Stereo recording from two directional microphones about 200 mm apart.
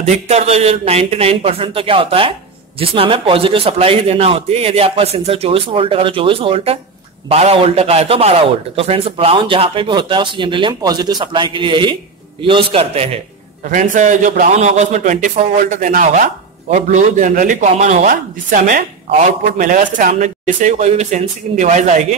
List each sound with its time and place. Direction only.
0.0 s a man's voice: 35° right (ahead or behind)